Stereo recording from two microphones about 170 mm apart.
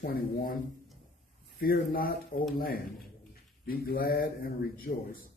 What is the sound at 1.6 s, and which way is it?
Speech, 60° left (ahead or behind).